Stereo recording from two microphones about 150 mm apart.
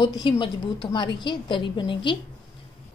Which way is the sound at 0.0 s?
30° left (ahead or behind).